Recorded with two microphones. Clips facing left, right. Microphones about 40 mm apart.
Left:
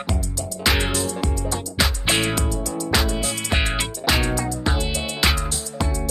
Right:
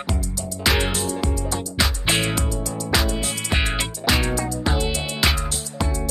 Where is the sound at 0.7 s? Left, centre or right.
Centre.